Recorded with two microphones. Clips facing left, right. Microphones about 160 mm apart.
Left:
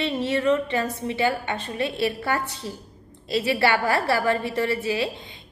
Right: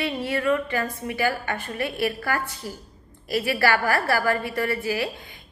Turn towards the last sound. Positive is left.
turn(degrees=20)  # may be behind; listen again after turning